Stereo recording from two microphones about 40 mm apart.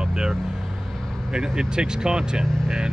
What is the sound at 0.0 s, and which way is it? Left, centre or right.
Vehicle, centre.